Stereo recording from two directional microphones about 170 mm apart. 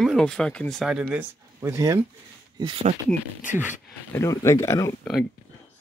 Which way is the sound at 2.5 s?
30° right (ahead or behind).